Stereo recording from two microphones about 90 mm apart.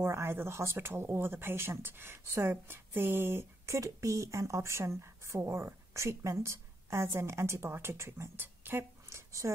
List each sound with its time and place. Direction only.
0.0 s speech: 30° right (ahead or behind)